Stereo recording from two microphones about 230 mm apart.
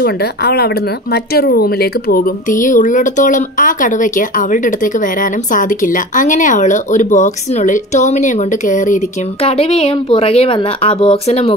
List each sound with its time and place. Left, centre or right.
0.0 s a woman's voice: left